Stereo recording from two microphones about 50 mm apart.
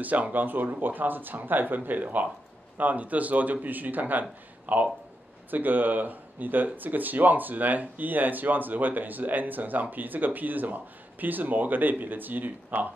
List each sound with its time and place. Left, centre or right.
0.0 s speech: right